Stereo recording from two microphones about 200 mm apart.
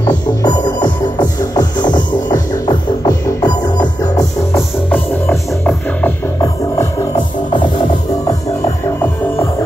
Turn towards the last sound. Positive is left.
turn(degrees=20)  # may be behind; listen again after turning